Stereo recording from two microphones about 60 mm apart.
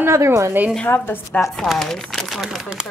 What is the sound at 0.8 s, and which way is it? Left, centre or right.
Speech, left.